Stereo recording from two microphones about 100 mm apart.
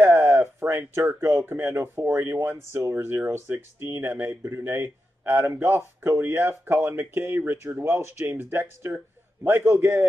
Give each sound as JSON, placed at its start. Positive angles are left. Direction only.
{"t": 0.0, "sound": "a man's voice", "side_deg": -30}